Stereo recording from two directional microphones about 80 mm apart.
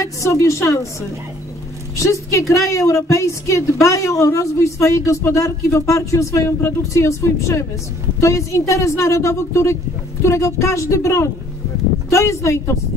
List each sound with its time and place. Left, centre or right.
0.0 s a woman's voice: left
2.0 s a woman's voice: left